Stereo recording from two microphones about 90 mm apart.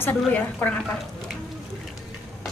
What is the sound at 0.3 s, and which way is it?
Speech, 15° left (ahead or behind).